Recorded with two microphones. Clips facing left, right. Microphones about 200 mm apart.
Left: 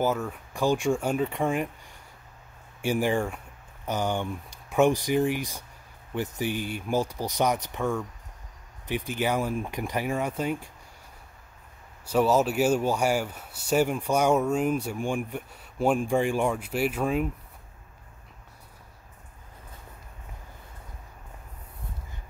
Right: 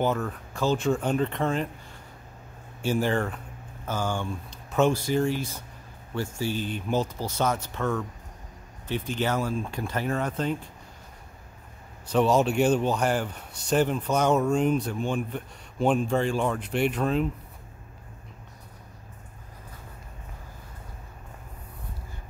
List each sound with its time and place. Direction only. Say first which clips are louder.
0.0 s speech: even; 10° left (ahead or behind)
2.8 s speech: even; 15° left (ahead or behind)
12.1 s speech: right 1 dB; 5° left (ahead or behind)